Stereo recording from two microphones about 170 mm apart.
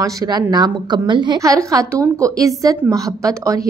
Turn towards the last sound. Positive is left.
turn(degrees=-20)  # may be behind; listen again after turning